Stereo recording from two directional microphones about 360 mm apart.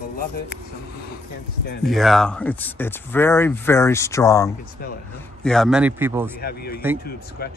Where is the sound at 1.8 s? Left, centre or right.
Centre.